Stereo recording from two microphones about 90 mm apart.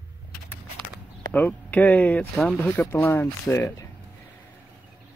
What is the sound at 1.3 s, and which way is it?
Speech, 15° left (ahead or behind).